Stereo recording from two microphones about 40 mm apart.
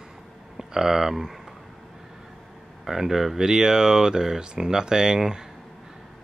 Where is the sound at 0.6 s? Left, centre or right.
Centre.